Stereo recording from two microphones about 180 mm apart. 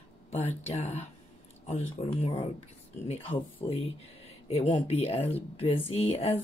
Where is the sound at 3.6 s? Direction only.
35° left (ahead or behind).